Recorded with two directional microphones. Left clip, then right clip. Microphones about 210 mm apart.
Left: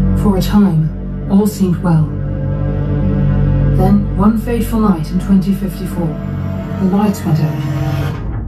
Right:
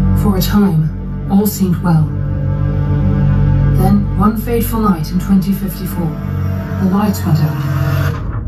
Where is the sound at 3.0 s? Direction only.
25° right (ahead or behind).